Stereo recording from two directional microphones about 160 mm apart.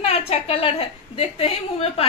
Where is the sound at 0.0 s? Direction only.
40° left (ahead or behind).